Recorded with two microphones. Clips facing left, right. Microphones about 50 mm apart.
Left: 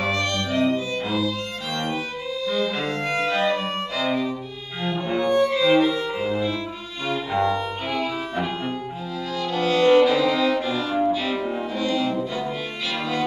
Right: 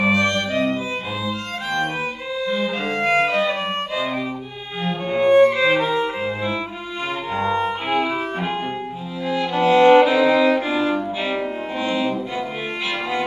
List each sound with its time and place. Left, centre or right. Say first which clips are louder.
0.0 s violin: right 5 dB; right
4.8 s music: right 4 dB; right
7.3 s violin: right 2 dB; right
9.3 s music: right 6 dB; right